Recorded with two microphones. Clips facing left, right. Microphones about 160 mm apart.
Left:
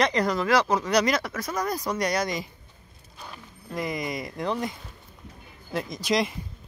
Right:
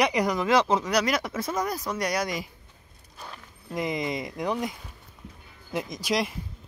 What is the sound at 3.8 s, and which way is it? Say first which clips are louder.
Speech: right 1 dB; 20° right (ahead or behind).